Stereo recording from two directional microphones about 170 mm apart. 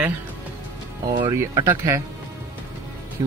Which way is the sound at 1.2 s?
25° right (ahead or behind).